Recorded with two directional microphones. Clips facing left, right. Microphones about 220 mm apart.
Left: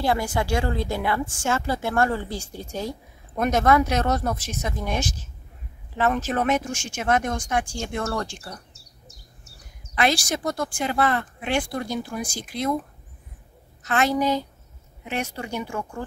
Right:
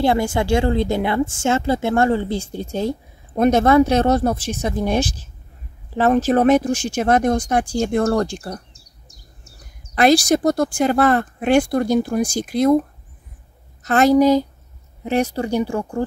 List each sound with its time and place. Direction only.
0.0 s speech: 25° right (ahead or behind)
9.9 s speech: 40° right (ahead or behind)
13.8 s speech: 40° right (ahead or behind)